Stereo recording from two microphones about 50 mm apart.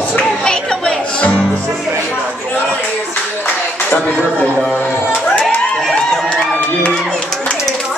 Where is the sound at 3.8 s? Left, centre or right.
Left.